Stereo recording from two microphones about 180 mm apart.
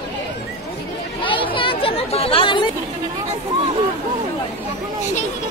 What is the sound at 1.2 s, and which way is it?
Chatter, 30° left (ahead or behind).